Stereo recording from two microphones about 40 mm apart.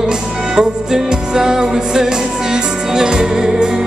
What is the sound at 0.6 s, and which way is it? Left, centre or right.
Music, centre.